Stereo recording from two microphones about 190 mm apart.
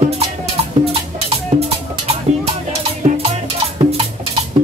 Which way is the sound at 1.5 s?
30° right (ahead or behind).